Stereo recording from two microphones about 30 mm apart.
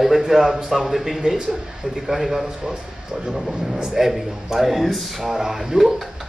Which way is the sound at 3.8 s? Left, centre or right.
Centre.